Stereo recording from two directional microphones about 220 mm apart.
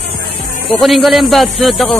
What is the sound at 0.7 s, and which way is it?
A man's voice, centre (ahead or behind).